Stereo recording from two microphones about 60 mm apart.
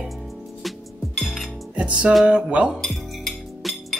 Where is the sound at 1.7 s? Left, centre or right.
Centre.